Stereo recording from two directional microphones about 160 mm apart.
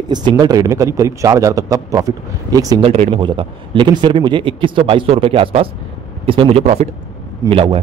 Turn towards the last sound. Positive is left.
turn(degrees=-35)  # may be behind; listen again after turning